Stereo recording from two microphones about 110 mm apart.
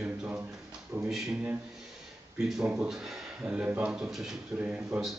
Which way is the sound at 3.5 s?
15° right (ahead or behind).